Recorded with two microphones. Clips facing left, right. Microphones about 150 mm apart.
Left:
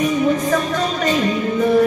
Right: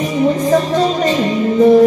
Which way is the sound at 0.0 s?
30° right (ahead or behind).